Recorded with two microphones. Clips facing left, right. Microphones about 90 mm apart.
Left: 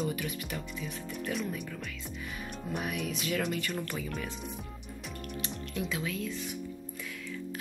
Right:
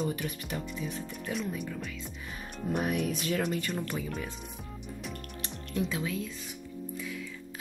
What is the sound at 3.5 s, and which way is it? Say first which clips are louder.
Speech: right 2 dB; 30° right (ahead or behind).